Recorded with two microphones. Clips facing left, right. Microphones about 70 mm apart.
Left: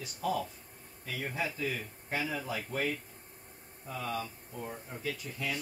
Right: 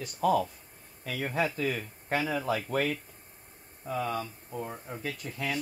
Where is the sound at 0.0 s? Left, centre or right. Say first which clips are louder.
Right 8 dB; right.